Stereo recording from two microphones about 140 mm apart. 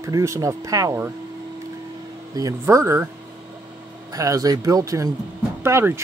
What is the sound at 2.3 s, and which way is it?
Speech, 25° right (ahead or behind).